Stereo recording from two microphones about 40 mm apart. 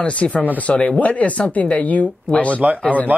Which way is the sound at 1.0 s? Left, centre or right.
Left.